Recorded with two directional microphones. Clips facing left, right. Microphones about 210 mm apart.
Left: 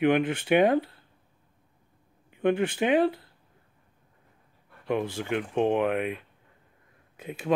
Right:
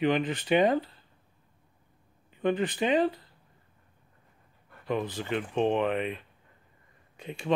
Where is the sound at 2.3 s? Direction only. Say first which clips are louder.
Left 3 dB; 10° left (ahead or behind).